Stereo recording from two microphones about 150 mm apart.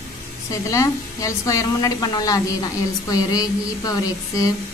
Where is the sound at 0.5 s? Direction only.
20° left (ahead or behind).